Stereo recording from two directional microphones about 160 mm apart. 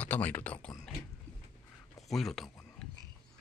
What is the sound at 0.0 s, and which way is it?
Speech, 10° left (ahead or behind).